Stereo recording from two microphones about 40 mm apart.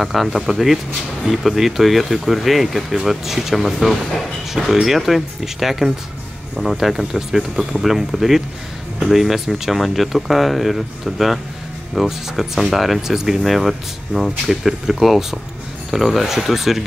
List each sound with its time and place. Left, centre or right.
0.0 s speech: centre
14.1 s speech: right
14.5 s speech: centre